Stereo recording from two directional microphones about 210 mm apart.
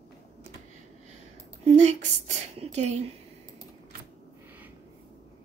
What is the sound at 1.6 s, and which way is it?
Speech, 30° right (ahead or behind).